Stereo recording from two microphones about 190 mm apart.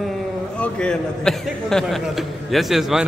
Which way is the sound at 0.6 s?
5° left (ahead or behind).